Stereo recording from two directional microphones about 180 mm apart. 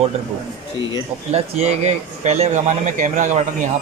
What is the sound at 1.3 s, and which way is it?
Speech, 35° right (ahead or behind).